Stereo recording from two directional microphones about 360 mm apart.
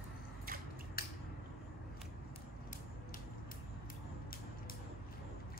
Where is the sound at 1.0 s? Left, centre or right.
Left.